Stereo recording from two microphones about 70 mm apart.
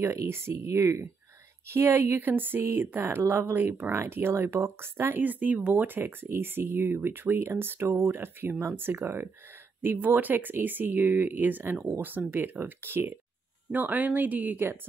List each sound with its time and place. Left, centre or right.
0.0 s speech: right
5.2 s speech: right